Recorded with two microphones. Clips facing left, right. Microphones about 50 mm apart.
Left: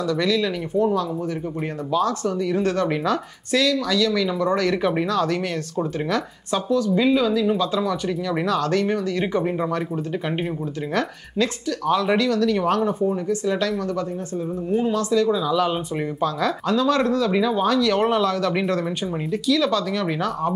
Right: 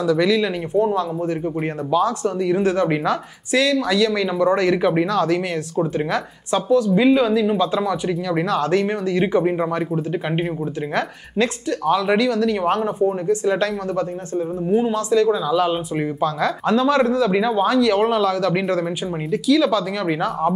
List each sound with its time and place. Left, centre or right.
0.0 s speech: centre
1.9 s speech: centre
3.7 s speech: right
4.4 s speech: centre
5.9 s speech: centre
7.9 s speech: centre
11.8 s speech: centre
13.3 s speech: right
15.3 s speech: centre
16.6 s speech: right
16.9 s speech: centre